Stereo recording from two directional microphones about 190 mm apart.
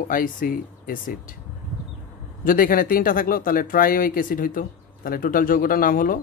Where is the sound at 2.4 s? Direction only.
45° left (ahead or behind).